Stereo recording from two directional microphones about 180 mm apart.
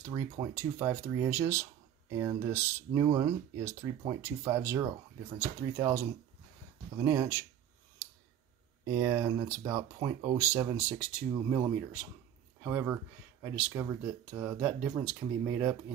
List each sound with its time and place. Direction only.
0.1 s speech: 20° right (ahead or behind)
8.8 s speech: 15° right (ahead or behind)
12.6 s speech: 10° right (ahead or behind)